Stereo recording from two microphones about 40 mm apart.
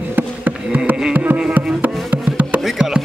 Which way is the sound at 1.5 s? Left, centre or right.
Right.